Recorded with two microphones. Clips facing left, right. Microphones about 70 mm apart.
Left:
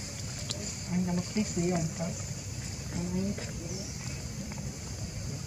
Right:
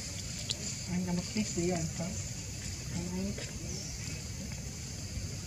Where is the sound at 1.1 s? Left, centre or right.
Left.